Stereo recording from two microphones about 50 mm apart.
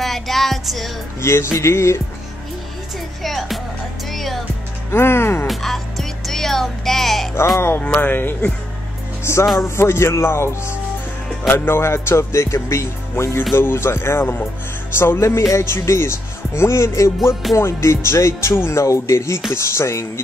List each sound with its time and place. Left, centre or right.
0.0 s music: centre
1.2 s speech: left
3.2 s music: centre
4.9 s speech: left
5.5 s music: centre
7.3 s speech: left
8.0 s speech: left
9.2 s speech: left
11.4 s speech: left
13.1 s speech: left
17.3 s music: centre
17.6 s speech: left